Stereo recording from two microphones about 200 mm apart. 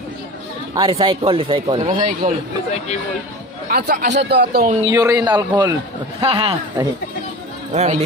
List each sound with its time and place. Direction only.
0.7 s speech: 25° right (ahead or behind)
2.0 s speech: 45° right (ahead or behind)
3.6 s speech: 50° right (ahead or behind)
4.8 s a man's voice: 15° right (ahead or behind); by 8.0 s 35° right (ahead or behind)